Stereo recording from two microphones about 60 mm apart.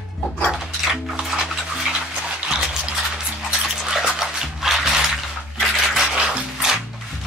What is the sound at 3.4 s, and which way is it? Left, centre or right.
Music, centre.